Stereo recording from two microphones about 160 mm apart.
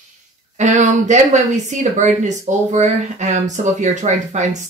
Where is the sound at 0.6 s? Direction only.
50° right (ahead or behind).